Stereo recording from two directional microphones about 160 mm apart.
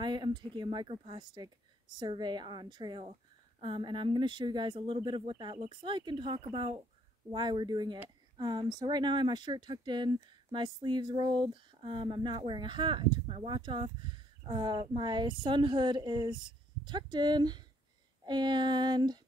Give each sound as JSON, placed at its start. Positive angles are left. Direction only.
{"t": 0.0, "sound": "speech", "side_deg": -30}